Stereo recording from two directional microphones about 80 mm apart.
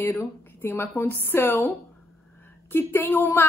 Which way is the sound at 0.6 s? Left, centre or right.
Left.